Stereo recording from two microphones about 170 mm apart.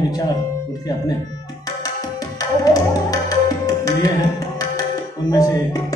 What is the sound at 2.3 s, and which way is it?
Tabla, 20° left (ahead or behind).